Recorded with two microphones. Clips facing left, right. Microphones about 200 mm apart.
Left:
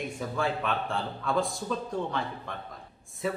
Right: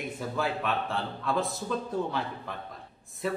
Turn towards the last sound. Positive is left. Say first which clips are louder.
# even
turn(degrees=0)  # may be behind; listen again after turning